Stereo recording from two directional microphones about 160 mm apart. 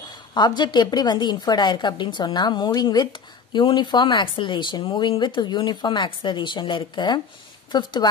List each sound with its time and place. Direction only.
0.3 s a woman's voice: 25° left (ahead or behind)